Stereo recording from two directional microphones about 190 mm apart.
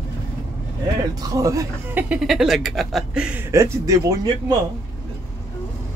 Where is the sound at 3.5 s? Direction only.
15° right (ahead or behind).